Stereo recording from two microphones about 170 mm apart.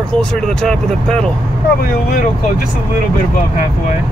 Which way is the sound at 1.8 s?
60° left (ahead or behind).